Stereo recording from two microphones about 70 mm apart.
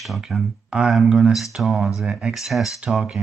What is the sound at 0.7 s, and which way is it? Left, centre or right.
Speech, centre.